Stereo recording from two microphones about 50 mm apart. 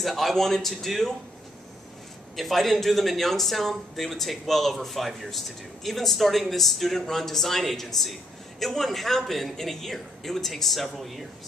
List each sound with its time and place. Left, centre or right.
0.0 s speech: centre
2.3 s speech: centre